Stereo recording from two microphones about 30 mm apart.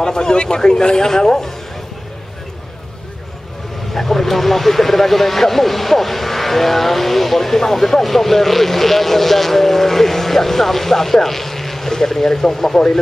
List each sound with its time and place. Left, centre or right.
0.0 s a man's voice: left
3.9 s speech: centre